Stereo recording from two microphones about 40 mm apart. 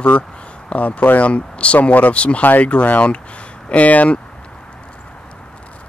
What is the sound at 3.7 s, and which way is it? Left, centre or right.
Speech, left.